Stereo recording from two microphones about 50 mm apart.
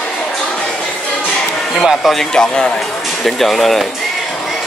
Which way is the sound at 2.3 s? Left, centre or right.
Centre.